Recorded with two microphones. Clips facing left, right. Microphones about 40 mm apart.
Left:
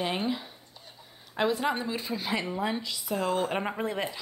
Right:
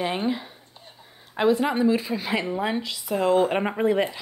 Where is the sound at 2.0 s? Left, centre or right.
Right.